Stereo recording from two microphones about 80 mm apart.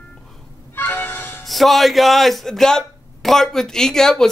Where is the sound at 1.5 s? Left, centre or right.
Centre.